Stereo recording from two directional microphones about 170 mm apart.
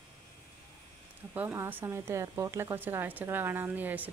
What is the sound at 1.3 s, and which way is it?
Speech, 10° right (ahead or behind).